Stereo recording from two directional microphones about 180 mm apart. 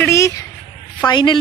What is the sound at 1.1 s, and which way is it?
Speech, 25° left (ahead or behind).